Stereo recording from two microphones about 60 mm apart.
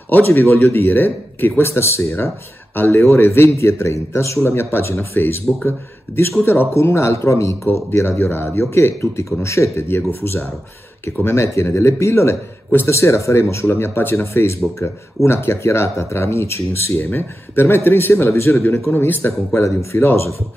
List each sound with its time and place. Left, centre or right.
0.1 s speech: left
1.6 s speech: left
3.5 s speech: left